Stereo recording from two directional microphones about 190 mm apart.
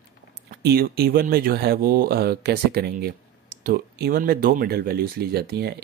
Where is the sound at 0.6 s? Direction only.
55° right (ahead or behind).